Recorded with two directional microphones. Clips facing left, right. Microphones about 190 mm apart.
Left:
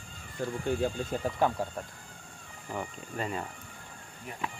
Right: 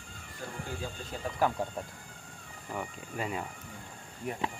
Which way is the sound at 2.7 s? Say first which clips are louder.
Left 1 dB; 5° right (ahead or behind).